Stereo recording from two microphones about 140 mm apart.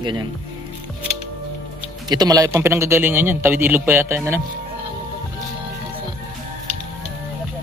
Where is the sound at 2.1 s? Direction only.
25° right (ahead or behind).